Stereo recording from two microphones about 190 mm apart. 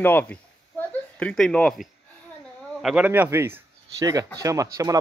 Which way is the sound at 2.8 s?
Centre (ahead or behind).